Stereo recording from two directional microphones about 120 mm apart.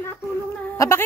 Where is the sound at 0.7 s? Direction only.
25° left (ahead or behind).